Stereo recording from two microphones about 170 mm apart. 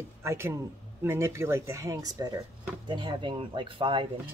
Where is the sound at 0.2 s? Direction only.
15° right (ahead or behind).